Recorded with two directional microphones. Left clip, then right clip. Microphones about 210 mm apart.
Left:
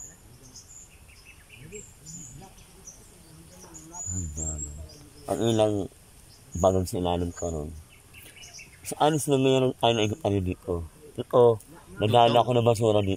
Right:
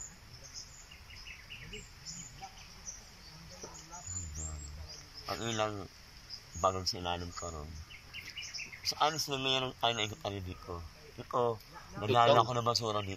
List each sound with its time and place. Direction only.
5.2 s speech: 40° left (ahead or behind)
8.8 s speech: 50° left (ahead or behind)